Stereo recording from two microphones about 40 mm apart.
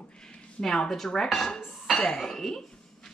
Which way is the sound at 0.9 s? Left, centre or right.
Centre.